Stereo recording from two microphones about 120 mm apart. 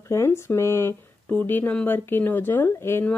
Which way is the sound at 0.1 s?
20° left (ahead or behind).